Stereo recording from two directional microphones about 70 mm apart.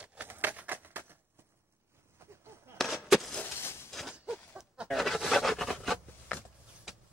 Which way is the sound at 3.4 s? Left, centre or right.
Left.